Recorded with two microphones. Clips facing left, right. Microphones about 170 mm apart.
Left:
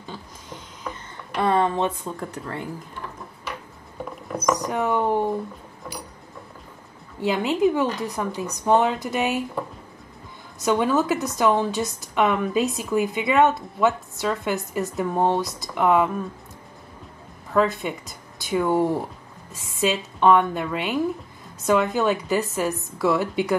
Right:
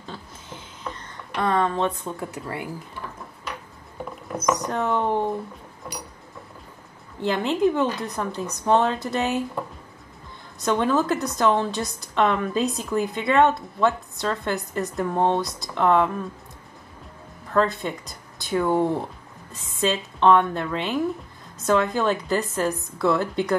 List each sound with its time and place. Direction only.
0.8 s speech: 10° left (ahead or behind)
2.1 s speech: 10° right (ahead or behind)
4.0 s a sound: centre (ahead or behind)
4.6 s a woman's voice: 10° left (ahead or behind)
7.2 s a woman's voice: 5° left (ahead or behind)
10.6 s a woman's voice: 5° left (ahead or behind)
17.5 s a woman's voice: 5° left (ahead or behind)